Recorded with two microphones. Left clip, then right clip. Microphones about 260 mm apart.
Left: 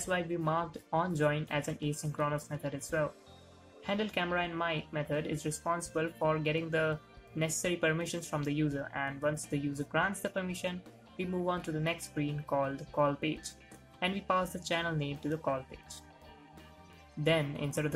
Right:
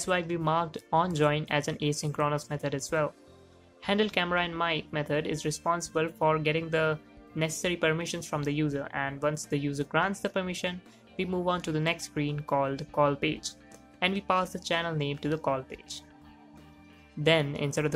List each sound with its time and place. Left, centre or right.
0.0 s speech: centre
17.2 s speech: centre